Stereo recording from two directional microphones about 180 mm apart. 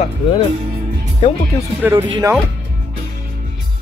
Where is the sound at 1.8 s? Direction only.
10° right (ahead or behind).